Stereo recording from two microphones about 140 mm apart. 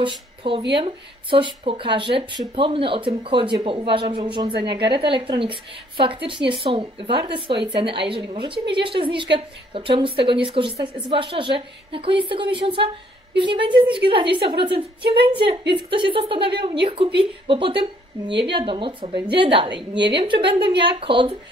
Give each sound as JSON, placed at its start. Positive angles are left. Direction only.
{"t": 0.0, "sound": "a woman's voice", "side_deg": -35}